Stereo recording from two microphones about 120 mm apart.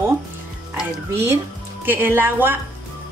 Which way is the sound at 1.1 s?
20° right (ahead or behind).